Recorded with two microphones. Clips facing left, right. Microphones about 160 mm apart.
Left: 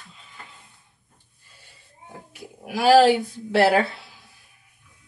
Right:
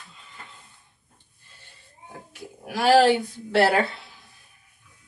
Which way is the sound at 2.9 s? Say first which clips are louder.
Left 2 dB; 20° left (ahead or behind).